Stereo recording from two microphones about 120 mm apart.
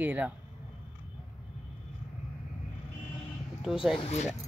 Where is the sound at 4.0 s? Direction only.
65° left (ahead or behind).